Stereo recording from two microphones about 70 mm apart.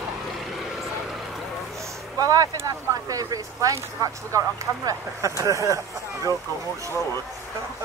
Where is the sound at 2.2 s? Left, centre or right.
Right.